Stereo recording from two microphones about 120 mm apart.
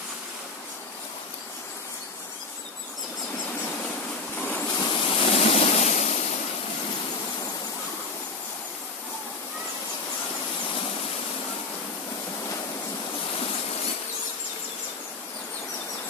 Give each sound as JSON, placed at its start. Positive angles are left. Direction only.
{"t": 4.4, "sound": "vehicle", "side_deg": 15}
{"t": 4.8, "sound": "waves", "side_deg": 45}